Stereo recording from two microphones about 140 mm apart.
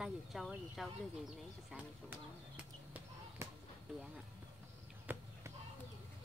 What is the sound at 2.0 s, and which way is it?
Basketball bounce, 10° right (ahead or behind).